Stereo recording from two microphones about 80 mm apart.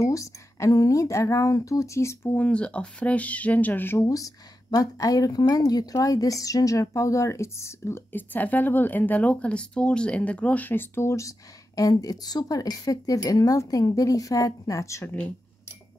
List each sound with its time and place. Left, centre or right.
0.0 s a woman's voice: left
2.3 s speech: centre
4.0 s a woman's voice: left